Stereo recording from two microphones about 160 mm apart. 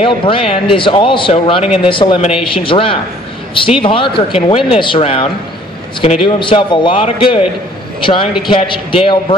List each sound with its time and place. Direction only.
0.0 s speech: 35° left (ahead or behind)